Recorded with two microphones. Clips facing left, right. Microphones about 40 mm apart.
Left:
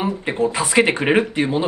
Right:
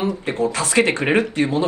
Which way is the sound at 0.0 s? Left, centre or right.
Centre.